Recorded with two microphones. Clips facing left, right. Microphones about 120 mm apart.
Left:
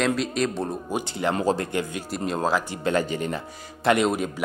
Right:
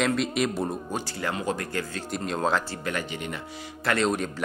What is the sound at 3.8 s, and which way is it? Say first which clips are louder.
Speech: left 5 dB; 15° left (ahead or behind).